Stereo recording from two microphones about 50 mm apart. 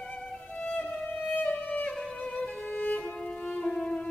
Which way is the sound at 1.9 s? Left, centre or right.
Centre.